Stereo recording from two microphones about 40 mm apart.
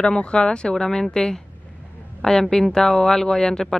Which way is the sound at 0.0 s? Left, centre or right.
Left.